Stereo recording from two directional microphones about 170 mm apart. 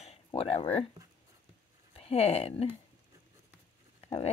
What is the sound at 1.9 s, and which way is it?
Speech, 35° left (ahead or behind).